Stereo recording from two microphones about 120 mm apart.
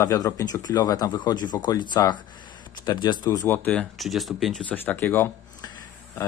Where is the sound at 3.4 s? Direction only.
15° left (ahead or behind).